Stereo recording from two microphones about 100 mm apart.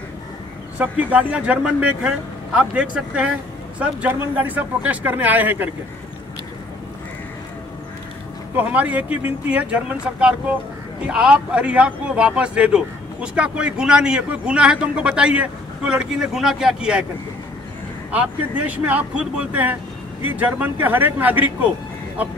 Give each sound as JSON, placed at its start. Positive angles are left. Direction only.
{"t": 0.7, "sound": "a man's voice", "side_deg": -15}
{"t": 8.5, "sound": "a man's voice", "side_deg": -15}
{"t": 18.1, "sound": "a man's voice", "side_deg": -15}